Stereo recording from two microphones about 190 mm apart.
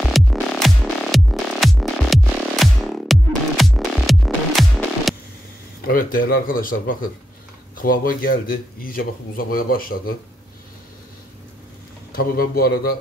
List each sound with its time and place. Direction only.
0.1 s music: centre (ahead or behind)
5.9 s speech: 50° left (ahead or behind)
12.1 s speech: 50° left (ahead or behind)